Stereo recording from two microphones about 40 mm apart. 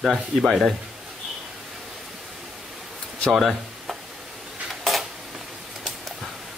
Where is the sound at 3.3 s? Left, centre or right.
Centre.